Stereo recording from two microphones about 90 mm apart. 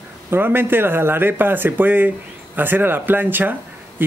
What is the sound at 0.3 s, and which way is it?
Speech, 25° right (ahead or behind).